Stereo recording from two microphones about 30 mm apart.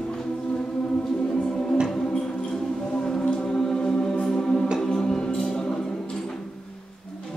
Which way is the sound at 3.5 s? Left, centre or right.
Left.